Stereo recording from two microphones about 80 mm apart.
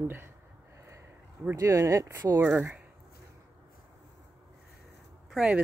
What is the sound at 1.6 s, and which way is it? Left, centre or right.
Speech, right.